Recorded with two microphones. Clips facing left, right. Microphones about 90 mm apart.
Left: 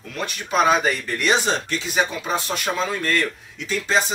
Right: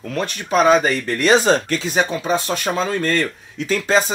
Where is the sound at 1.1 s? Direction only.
40° right (ahead or behind).